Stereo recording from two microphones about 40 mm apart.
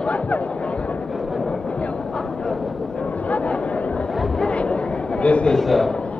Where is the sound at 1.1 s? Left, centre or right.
Centre.